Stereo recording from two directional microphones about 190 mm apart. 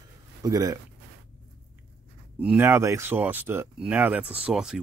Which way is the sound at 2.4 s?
10° right (ahead or behind).